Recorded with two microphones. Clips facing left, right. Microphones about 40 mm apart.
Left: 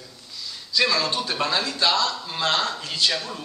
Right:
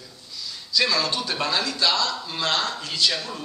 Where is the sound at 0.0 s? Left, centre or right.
Centre.